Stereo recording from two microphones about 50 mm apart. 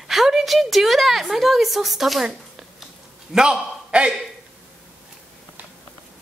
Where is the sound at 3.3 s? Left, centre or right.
Centre.